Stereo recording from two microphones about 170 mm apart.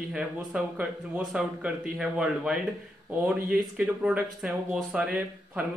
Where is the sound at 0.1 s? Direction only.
5° right (ahead or behind).